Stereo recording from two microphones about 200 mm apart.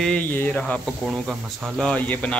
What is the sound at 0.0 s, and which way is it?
Speech, 5° left (ahead or behind).